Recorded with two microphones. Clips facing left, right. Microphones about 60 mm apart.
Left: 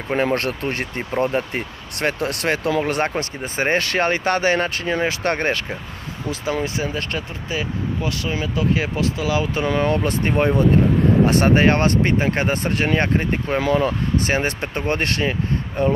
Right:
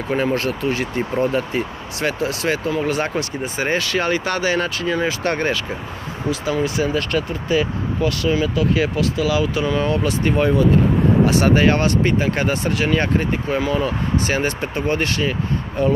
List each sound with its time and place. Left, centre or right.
0.1 s speech: left
0.6 s speech: left
6.6 s speech: left
11.4 s speech: left